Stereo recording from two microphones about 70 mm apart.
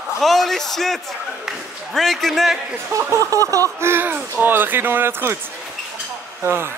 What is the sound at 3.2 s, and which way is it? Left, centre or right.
Speech, right.